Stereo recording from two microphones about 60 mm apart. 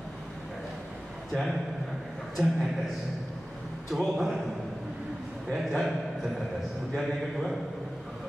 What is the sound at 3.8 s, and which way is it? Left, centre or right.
Speech, centre.